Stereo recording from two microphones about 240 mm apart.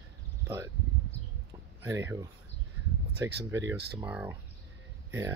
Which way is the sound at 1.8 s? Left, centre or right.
Centre.